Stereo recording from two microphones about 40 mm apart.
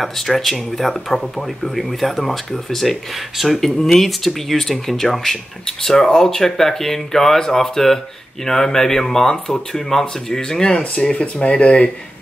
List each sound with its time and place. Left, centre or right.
0.0 s speech: centre; by 11.9 s left